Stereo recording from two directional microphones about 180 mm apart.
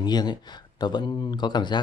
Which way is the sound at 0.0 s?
25° left (ahead or behind).